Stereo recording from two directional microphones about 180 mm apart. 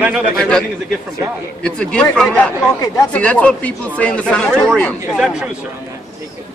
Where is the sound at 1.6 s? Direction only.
5° left (ahead or behind).